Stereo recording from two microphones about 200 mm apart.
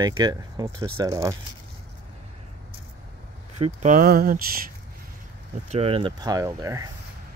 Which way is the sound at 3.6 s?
35° right (ahead or behind).